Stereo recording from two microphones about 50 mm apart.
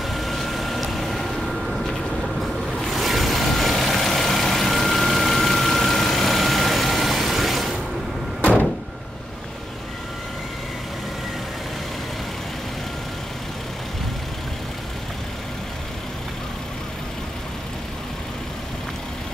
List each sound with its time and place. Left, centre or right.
0.1 s vehicle: centre
8.4 s door: left